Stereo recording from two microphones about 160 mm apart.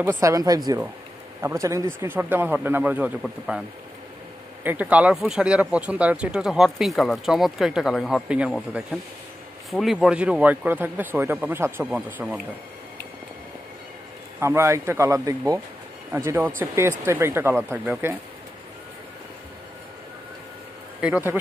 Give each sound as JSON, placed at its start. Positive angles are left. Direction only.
{"t": 0.0, "sound": "a man's voice", "side_deg": -15}
{"t": 4.6, "sound": "a man's voice", "side_deg": -10}
{"t": 14.4, "sound": "a man's voice", "side_deg": -15}
{"t": 21.0, "sound": "a man's voice", "side_deg": -10}